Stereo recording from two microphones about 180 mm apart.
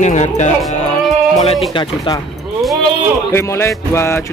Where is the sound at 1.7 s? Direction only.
25° left (ahead or behind).